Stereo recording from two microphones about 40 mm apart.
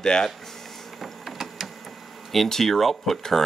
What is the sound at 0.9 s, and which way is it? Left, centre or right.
Printer, centre.